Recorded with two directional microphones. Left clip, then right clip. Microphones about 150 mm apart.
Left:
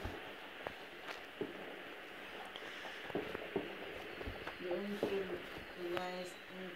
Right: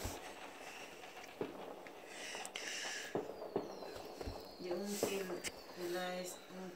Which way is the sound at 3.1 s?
10° right (ahead or behind).